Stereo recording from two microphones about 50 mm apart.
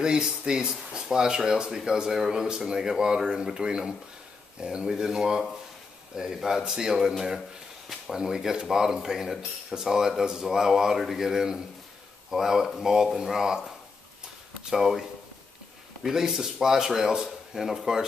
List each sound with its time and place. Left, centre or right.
0.0 s speech: centre